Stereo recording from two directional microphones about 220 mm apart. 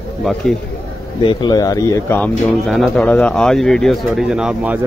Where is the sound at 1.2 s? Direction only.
20° left (ahead or behind); by 4.7 s 5° right (ahead or behind).